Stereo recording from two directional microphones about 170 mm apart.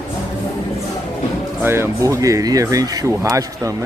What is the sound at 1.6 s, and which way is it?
Speech, 15° right (ahead or behind).